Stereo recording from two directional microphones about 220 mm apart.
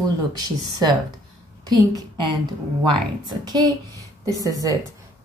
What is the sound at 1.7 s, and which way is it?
Speech, 15° right (ahead or behind).